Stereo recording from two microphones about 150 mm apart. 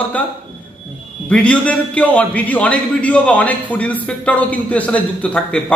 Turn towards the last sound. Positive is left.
turn(degrees=10)  # may be behind; listen again after turning